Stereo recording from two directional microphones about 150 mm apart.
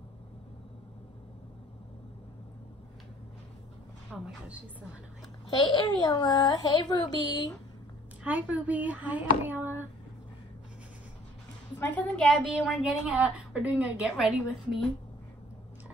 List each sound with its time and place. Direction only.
4.1 s a woman's voice: 5° left (ahead or behind)
5.7 s speech: 25° left (ahead or behind)
8.2 s a woman's voice: 10° right (ahead or behind)
11.8 s a woman's voice: 10° left (ahead or behind)
13.0 s a woman's voice: 10° right (ahead or behind)